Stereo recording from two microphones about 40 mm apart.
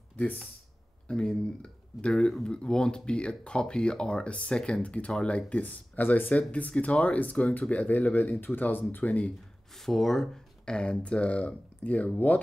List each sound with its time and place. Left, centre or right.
1.0 s speech: centre
5.6 s speech: left
6.3 s speech: left
9.8 s speech: centre; by 12.1 s left